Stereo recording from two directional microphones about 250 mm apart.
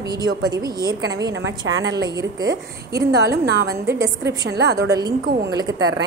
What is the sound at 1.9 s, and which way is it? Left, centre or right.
Speech, centre.